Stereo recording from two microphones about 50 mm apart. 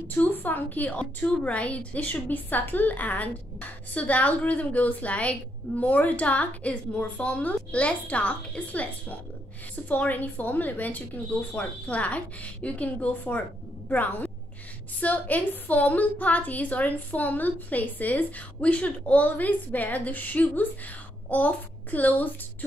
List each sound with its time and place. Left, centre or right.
0.1 s a woman's voice: left